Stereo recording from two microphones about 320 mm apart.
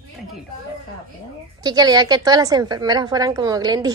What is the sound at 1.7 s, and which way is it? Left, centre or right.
A woman's voice, centre.